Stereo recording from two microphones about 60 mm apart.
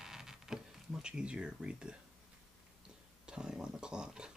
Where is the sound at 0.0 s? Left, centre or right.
Centre.